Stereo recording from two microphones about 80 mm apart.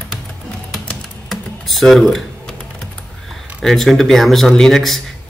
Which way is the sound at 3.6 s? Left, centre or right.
Centre.